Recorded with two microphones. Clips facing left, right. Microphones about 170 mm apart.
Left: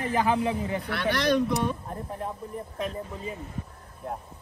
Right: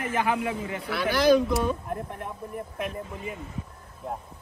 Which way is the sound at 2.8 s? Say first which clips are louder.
Left 1 dB; 30° left (ahead or behind).